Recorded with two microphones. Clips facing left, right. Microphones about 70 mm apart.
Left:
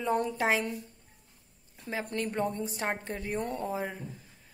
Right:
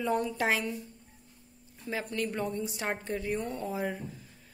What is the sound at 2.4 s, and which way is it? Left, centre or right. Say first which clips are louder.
A woman's voice: left 2 dB; left.